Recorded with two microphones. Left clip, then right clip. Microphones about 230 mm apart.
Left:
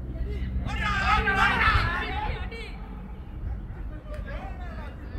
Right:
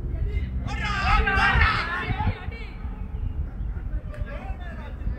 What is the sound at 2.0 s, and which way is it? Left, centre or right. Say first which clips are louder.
Chatter: right 1 dB; left.